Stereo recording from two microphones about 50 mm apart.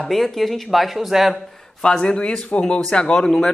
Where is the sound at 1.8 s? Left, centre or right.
Centre.